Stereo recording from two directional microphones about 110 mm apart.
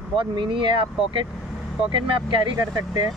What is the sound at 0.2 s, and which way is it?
Speech, 50° right (ahead or behind).